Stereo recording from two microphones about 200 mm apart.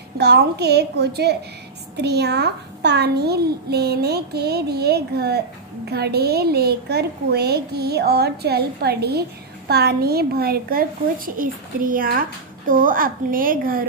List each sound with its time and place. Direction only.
0.2 s a child's voice: 55° right (ahead or behind)